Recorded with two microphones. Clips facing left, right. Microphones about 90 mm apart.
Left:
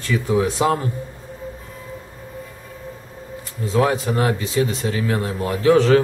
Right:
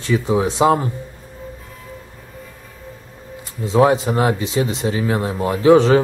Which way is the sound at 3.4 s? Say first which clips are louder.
Right 5 dB; 20° right (ahead or behind).